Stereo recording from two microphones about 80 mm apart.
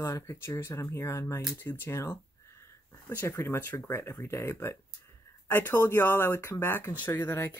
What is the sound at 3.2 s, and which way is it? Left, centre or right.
Speech, left.